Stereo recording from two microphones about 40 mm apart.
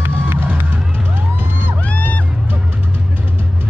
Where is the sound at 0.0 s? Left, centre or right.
Right.